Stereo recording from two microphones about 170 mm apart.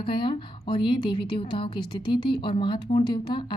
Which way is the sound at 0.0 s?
30° left (ahead or behind).